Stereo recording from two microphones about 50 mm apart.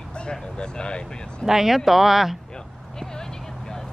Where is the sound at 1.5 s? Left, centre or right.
Centre.